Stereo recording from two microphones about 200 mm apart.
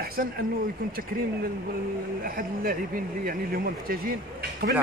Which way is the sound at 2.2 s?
45° right (ahead or behind).